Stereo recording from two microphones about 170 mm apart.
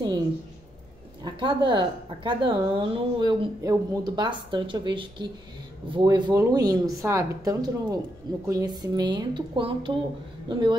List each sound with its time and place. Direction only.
1.2 s a woman's voice: 25° right (ahead or behind)